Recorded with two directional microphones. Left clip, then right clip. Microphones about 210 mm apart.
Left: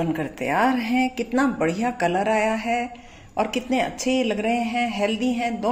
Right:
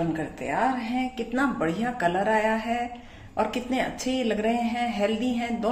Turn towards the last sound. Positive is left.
turn(degrees=20)  # may be behind; listen again after turning